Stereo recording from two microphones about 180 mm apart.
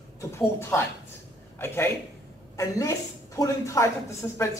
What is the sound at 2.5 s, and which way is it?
Speech, 20° left (ahead or behind).